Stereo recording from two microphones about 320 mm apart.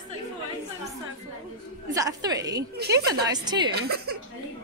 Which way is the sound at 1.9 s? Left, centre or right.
Centre.